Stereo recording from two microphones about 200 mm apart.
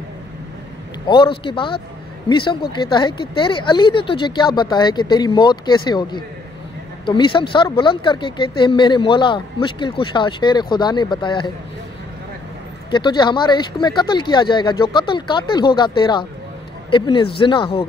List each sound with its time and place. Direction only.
1.0 s speech: 25° left (ahead or behind)
12.9 s speech: 20° left (ahead or behind)